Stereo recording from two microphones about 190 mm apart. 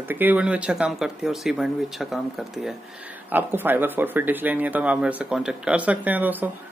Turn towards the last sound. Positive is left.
turn(degrees=-10)  # may be behind; listen again after turning